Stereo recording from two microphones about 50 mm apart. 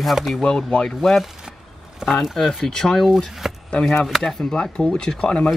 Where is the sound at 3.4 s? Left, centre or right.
Centre.